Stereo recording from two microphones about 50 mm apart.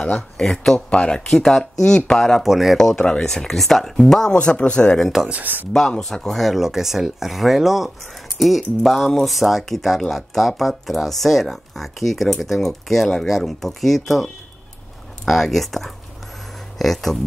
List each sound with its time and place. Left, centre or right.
0.4 s speech: centre
0.7 s speech: left
1.3 s speech: centre
2.4 s speech: centre
3.2 s speech: centre
4.4 s speech: left
5.3 s speech: right
5.7 s speech: centre